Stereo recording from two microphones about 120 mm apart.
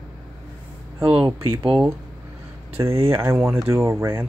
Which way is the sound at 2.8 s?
20° right (ahead or behind).